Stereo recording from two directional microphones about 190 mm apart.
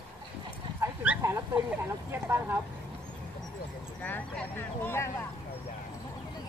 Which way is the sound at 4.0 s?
10° left (ahead or behind).